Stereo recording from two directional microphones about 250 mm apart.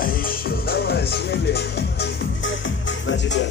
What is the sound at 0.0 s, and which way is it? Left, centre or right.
Music, left.